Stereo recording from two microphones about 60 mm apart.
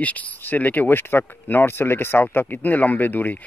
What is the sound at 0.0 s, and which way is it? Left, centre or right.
Speech, left.